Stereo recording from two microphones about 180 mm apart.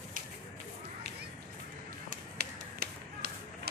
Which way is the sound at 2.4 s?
60° right (ahead or behind).